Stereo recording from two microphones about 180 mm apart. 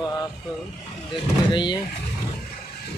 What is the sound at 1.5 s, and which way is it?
Speech, 25° left (ahead or behind).